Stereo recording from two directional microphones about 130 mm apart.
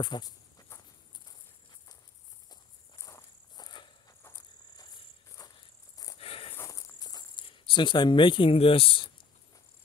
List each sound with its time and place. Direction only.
0.0 s walk: 30° left (ahead or behind)
3.0 s walk: 25° left (ahead or behind)
3.6 s insect: 35° left (ahead or behind)
5.4 s insect: 25° left (ahead or behind)
6.1 s a sound: 45° left (ahead or behind)
6.5 s cricket: 25° left (ahead or behind); by 9.1 s 45° left (ahead or behind)